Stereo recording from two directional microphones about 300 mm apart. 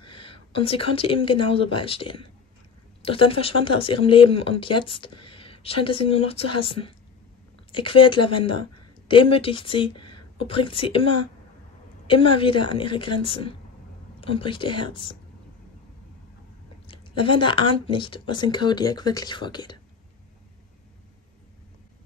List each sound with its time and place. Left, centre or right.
0.3 s speech: centre
16.8 s speech: centre